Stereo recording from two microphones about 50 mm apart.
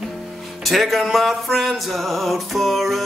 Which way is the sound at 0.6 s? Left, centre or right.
Centre.